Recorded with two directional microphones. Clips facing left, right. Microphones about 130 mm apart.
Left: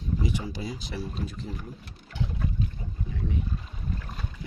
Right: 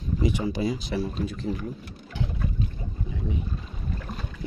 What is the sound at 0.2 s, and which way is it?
Speech, 65° right (ahead or behind).